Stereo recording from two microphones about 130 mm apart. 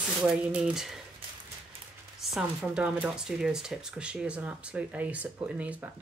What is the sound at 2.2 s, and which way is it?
Speech, 5° right (ahead or behind).